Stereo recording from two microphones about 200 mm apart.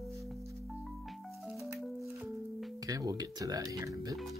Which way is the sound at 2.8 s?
20° right (ahead or behind).